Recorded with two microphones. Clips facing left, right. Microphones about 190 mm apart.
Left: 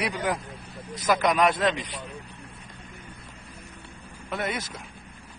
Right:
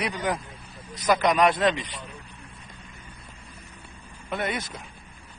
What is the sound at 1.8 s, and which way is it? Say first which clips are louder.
Speech: left 1 dB; 25° left (ahead or behind).